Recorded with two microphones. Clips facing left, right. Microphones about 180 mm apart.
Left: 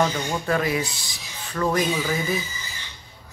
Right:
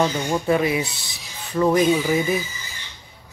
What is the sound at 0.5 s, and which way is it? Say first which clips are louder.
Speech: right 3 dB; 20° right (ahead or behind).